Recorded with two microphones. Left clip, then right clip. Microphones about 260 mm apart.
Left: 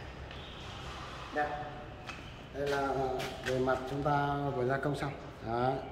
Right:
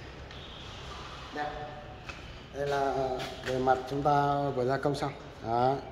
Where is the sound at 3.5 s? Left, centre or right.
Centre.